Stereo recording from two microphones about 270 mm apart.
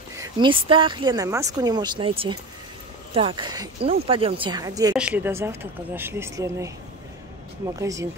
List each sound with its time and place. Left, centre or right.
0.2 s speech: centre
7.8 s speech: centre